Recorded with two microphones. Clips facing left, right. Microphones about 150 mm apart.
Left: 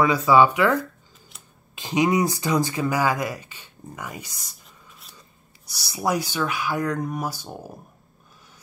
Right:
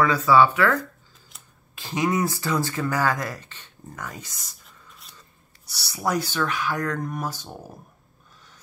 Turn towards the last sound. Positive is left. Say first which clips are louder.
# left 1 dB
turn(degrees=10)  # may be behind; listen again after turning